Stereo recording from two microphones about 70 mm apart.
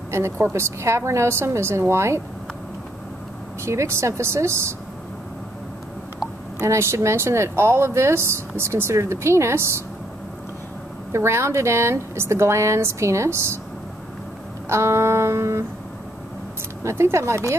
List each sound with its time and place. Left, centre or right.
0.1 s speech: right
3.6 s speech: right
6.6 s speech: right
11.1 s speech: right
14.7 s speech: right
16.8 s speech: right